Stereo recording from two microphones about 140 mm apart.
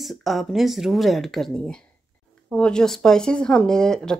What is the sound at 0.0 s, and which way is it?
Speech, centre (ahead or behind).